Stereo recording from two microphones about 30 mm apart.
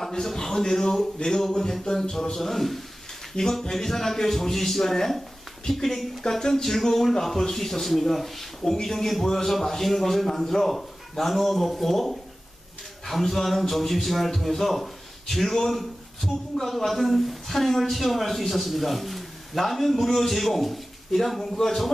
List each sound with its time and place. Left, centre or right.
0.1 s speech: centre
1.5 s a sound: left
2.4 s a man's voice: centre
3.4 s speech: left
3.7 s a man's voice: centre